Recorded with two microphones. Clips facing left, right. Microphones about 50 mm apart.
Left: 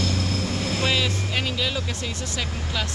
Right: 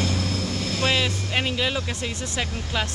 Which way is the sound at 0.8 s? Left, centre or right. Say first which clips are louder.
Right 3 dB; centre.